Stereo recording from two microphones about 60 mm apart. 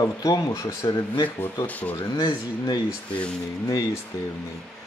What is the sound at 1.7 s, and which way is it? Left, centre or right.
Speech, left.